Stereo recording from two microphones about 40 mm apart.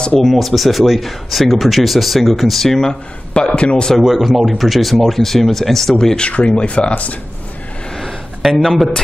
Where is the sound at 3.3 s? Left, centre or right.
Left.